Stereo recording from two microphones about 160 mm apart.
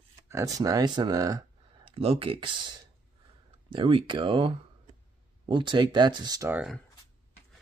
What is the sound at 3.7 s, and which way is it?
Speech, 30° right (ahead or behind).